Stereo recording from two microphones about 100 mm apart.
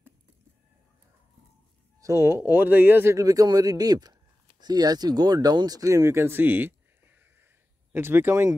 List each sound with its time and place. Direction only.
2.0 s speech: 30° right (ahead or behind)
3.2 s speech: 35° right (ahead or behind)